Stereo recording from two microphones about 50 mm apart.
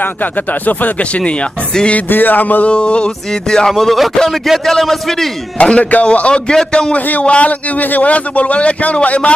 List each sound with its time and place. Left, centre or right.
0.0 s a man's voice: left; by 2.0 s centre
2.0 s music: left
2.7 s speech: left; by 5.3 s centre
5.6 s a man's voice: left